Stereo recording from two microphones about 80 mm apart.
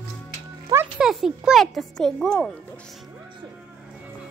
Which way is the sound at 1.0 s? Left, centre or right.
Centre.